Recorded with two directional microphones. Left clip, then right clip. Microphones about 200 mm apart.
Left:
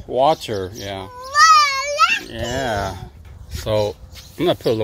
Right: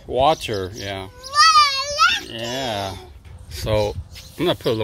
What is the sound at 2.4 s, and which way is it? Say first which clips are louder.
Fowl: left 3 dB; 25° left (ahead or behind).